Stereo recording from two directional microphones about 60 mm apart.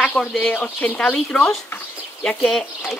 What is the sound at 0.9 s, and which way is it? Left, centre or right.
Speech, centre.